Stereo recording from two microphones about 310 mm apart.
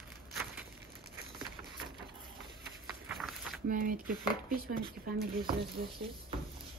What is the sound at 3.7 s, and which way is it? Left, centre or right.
Speech, right.